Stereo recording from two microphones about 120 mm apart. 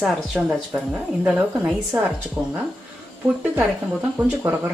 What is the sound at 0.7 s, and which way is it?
Speech, 10° right (ahead or behind).